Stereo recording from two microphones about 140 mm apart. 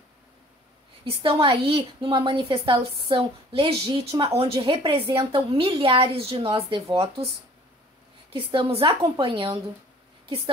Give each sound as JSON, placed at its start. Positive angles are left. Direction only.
{"t": 1.0, "sound": "a woman's voice", "side_deg": -40}
{"t": 8.3, "sound": "a woman's voice", "side_deg": -40}